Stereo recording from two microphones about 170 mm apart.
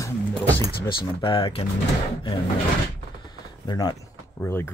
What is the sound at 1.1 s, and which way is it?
Speech, 30° left (ahead or behind).